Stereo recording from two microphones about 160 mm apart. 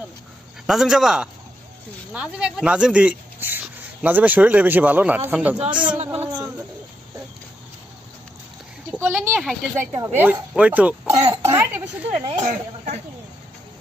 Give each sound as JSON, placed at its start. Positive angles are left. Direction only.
{"t": 0.7, "sound": "a man's voice", "side_deg": -5}
{"t": 8.9, "sound": "speech", "side_deg": -10}
{"t": 10.0, "sound": "speech", "side_deg": -20}
{"t": 10.5, "sound": "speech", "side_deg": -10}
{"t": 11.1, "sound": "cough", "side_deg": -40}
{"t": 11.5, "sound": "speech", "side_deg": -15}
{"t": 12.4, "sound": "a woman's voice", "side_deg": -50}